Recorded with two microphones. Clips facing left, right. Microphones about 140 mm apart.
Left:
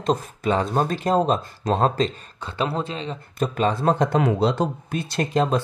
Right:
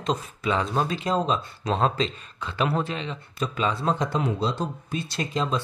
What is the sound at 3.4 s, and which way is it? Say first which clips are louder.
Speech: left 5 dB; 45° left (ahead or behind).